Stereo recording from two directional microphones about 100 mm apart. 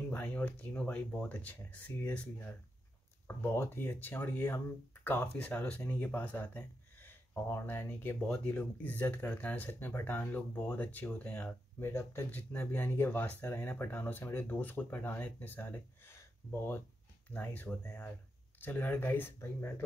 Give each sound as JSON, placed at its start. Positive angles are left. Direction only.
{"t": 0.1, "sound": "speech", "side_deg": 15}
{"t": 11.8, "sound": "speech", "side_deg": 30}
{"t": 12.3, "sound": "speech", "side_deg": 15}
{"t": 17.3, "sound": "speech", "side_deg": 15}